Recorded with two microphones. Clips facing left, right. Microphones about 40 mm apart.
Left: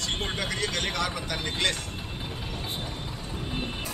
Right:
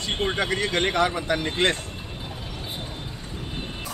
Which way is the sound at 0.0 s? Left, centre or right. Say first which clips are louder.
Right 5 dB; centre.